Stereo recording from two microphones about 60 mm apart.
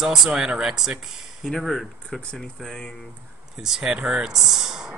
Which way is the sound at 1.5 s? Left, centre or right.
Centre.